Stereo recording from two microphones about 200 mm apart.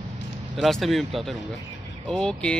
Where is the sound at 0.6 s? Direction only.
Centre (ahead or behind).